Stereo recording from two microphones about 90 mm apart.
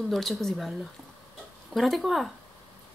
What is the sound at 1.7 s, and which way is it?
Speech, centre (ahead or behind).